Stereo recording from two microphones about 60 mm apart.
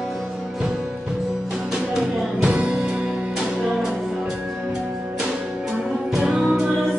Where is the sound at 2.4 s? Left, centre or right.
Right.